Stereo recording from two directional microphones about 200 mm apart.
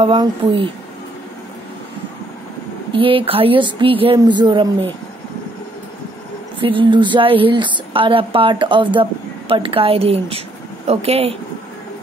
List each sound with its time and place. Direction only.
0.0 s speech: 25° right (ahead or behind)
2.9 s speech: 25° right (ahead or behind)
6.6 s speech: 25° right (ahead or behind)